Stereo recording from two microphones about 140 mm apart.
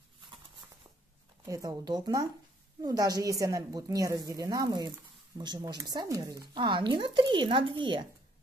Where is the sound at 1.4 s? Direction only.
25° right (ahead or behind).